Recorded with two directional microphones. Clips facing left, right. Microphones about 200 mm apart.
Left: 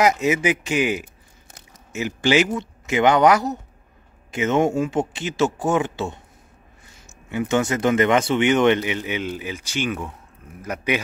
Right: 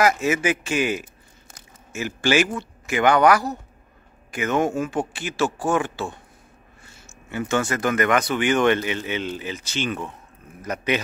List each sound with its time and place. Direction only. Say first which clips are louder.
0.0 s a man's voice: left 1 dB; 20° left (ahead or behind)
7.2 s speech: left 3 dB; 15° left (ahead or behind)